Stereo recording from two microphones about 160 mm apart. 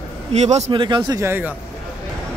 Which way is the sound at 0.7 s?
30° right (ahead or behind).